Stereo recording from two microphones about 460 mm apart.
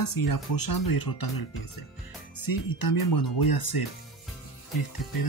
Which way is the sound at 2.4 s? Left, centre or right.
Left.